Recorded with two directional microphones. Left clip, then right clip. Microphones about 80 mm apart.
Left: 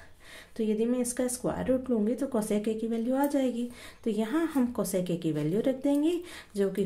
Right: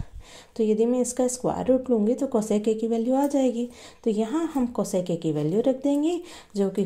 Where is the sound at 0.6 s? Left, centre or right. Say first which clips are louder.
Right 7 dB; right.